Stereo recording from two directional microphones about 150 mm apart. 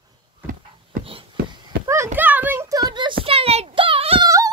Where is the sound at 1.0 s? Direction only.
35° right (ahead or behind).